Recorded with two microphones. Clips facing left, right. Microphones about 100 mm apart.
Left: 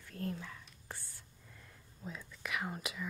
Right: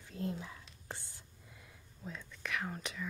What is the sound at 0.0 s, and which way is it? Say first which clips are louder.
Whispering: right 1 dB; 20° right (ahead or behind).